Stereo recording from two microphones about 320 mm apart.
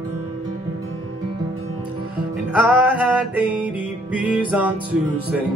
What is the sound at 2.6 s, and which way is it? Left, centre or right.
Music, centre.